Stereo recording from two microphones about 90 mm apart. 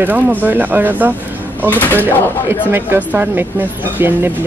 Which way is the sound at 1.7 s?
20° left (ahead or behind).